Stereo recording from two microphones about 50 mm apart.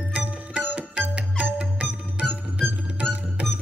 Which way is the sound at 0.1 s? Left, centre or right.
Right.